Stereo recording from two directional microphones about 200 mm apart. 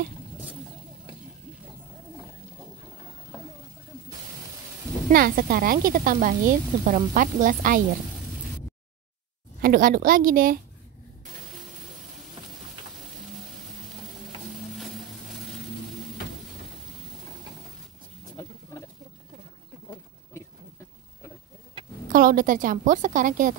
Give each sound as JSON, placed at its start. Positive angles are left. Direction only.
{"t": 5.1, "sound": "a woman's voice", "side_deg": -45}
{"t": 9.6, "sound": "a woman's voice", "side_deg": -45}
{"t": 14.8, "sound": "vehicle", "side_deg": 0}
{"t": 22.1, "sound": "a woman's voice", "side_deg": -45}